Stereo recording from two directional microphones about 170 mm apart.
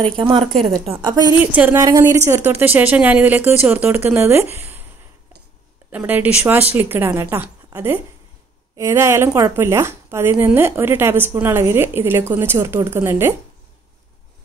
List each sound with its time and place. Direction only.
0.0 s speech: 30° right (ahead or behind)
1.5 s speech: 10° right (ahead or behind)
5.9 s speech: 10° right (ahead or behind)